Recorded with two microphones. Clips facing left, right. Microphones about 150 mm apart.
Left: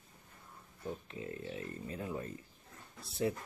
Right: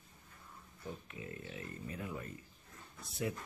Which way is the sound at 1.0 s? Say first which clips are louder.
Left 4 dB; 30° left (ahead or behind).